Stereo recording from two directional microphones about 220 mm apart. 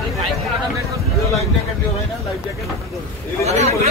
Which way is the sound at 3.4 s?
30° right (ahead or behind).